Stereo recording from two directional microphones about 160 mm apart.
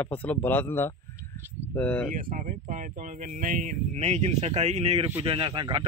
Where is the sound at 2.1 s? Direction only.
55° right (ahead or behind).